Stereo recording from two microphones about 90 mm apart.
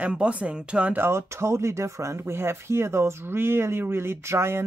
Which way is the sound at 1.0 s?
30° right (ahead or behind).